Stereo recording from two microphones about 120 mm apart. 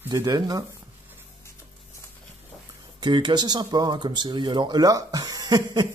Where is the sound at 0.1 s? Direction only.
30° right (ahead or behind).